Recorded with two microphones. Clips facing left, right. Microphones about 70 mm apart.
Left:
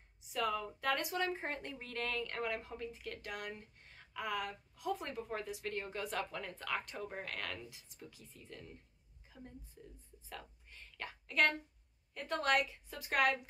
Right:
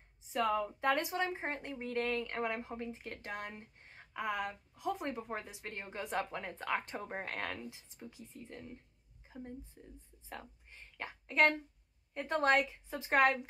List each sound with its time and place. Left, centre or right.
0.3 s speech: right
10.3 s a sound: right
12.1 s speech: right